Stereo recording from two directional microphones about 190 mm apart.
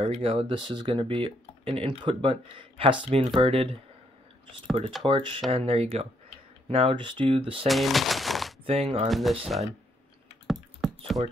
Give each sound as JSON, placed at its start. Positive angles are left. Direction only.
{"t": 0.0, "sound": "speech", "side_deg": -30}
{"t": 5.0, "sound": "speech", "side_deg": -25}
{"t": 7.6, "sound": "speech", "side_deg": 0}
{"t": 8.6, "sound": "speech", "side_deg": -30}
{"t": 9.1, "sound": "speech", "side_deg": 0}
{"t": 10.4, "sound": "computer keyboard", "side_deg": 0}